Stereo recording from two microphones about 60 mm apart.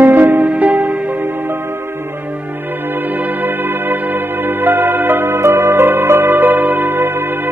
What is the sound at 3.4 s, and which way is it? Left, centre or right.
Music, right.